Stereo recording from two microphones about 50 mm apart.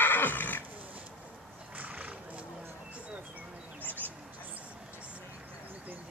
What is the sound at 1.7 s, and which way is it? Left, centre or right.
Horse, right.